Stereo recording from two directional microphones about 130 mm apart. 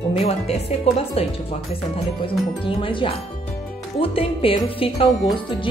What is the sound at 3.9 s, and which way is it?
Music, 45° left (ahead or behind).